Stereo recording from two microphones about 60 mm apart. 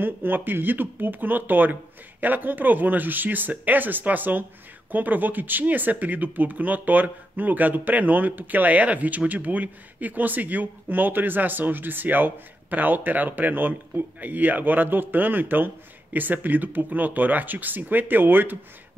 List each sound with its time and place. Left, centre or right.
0.0 s speech: right